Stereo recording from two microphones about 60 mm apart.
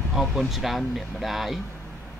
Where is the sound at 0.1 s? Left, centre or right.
Centre.